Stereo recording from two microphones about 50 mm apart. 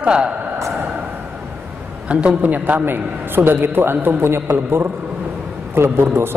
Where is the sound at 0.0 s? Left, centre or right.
Centre.